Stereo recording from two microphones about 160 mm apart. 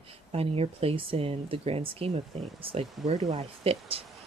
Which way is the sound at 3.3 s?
35° right (ahead or behind).